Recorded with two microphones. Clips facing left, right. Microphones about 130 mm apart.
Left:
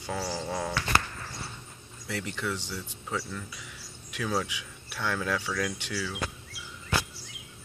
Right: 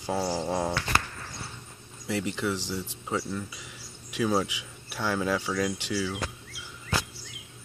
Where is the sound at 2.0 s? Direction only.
15° right (ahead or behind).